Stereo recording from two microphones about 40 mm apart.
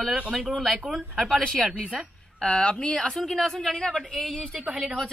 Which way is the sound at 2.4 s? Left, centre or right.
Left.